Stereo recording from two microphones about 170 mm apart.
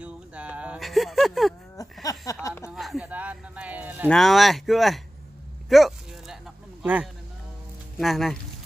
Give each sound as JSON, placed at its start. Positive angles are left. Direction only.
{"t": 0.0, "sound": "a sound", "side_deg": -5}
{"t": 2.0, "sound": "speech", "side_deg": 20}
{"t": 2.7, "sound": "speech", "side_deg": 0}
{"t": 4.1, "sound": "speech", "side_deg": 0}
{"t": 5.7, "sound": "a sound", "side_deg": 0}
{"t": 6.8, "sound": "speech", "side_deg": -10}